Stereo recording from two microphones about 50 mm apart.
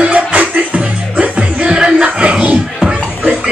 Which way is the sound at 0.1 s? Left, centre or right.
Right.